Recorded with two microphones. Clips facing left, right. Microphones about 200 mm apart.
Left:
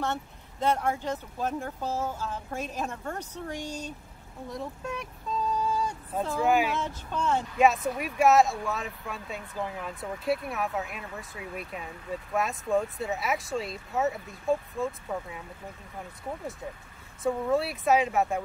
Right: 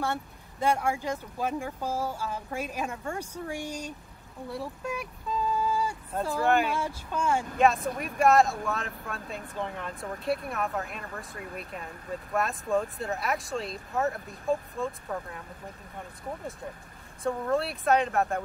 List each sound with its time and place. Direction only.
0.0 s speech: 10° right (ahead or behind)
5.5 s music: 5° right (ahead or behind)
6.7 s speech: 10° right (ahead or behind)
7.5 s speech: 5° left (ahead or behind)
17.2 s speech: centre (ahead or behind)